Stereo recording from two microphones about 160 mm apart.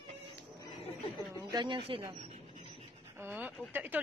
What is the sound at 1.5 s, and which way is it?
Speech, 30° right (ahead or behind).